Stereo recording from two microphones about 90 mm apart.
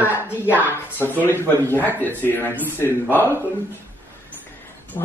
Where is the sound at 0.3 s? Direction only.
25° left (ahead or behind).